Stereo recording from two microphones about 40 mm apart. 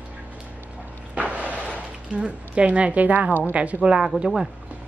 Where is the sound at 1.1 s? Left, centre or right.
Right.